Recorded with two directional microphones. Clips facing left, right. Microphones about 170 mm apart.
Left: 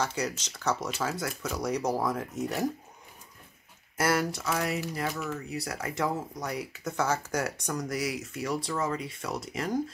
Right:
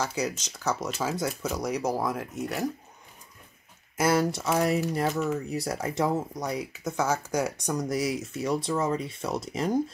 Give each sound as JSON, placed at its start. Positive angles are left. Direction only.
{"t": 0.0, "sound": "speech", "side_deg": -5}
{"t": 3.9, "sound": "speech", "side_deg": -20}
{"t": 6.8, "sound": "speech", "side_deg": -10}